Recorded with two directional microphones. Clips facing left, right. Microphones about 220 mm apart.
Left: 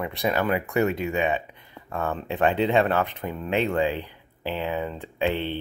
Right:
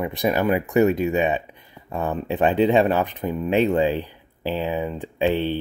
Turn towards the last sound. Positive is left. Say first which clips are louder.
# right 5 dB
turn(degrees=-10)  # may be behind; listen again after turning